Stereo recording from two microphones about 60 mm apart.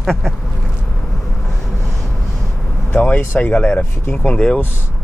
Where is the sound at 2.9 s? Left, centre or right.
Left.